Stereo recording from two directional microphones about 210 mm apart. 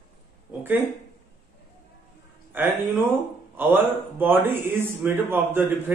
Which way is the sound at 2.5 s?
10° right (ahead or behind).